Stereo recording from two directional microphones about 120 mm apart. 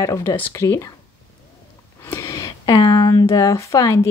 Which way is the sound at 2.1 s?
25° left (ahead or behind).